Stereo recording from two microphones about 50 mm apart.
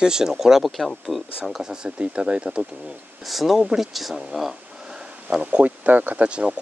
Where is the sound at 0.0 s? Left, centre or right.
Centre.